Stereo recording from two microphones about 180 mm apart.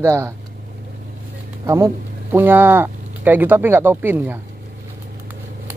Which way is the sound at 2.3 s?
10° right (ahead or behind).